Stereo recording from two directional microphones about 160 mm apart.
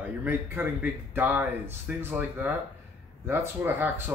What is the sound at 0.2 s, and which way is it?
Speech, 10° right (ahead or behind).